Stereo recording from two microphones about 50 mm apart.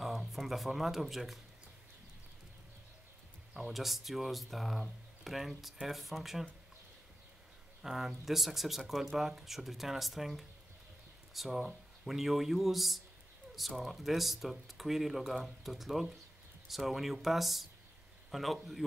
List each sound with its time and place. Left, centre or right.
0.0 s music: centre
0.4 s speech: centre
3.7 s speech: centre
7.8 s speech: centre